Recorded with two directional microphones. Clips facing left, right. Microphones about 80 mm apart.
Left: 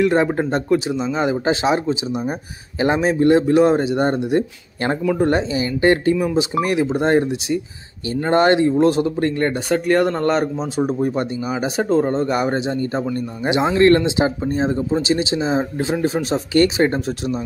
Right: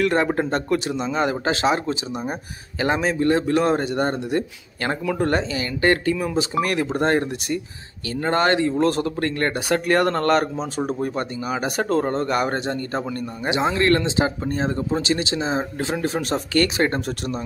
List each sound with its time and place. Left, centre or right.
0.0 s speech: centre
2.8 s speech: left
4.0 s speech: left
8.3 s speech: left
8.7 s speech: centre
13.7 s speech: left
14.4 s speech: centre